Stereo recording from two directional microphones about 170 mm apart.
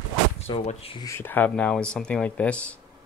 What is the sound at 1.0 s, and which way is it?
Speech, 15° left (ahead or behind).